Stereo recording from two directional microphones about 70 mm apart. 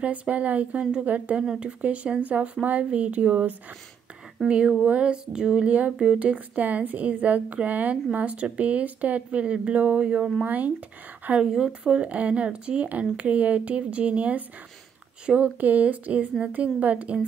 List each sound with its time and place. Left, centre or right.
0.0 s speech: right
11.2 s speech: centre